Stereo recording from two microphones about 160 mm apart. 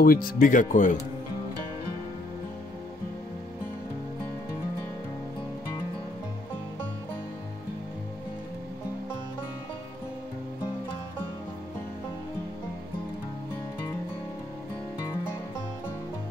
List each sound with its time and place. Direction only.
0.0 s speech: 65° left (ahead or behind)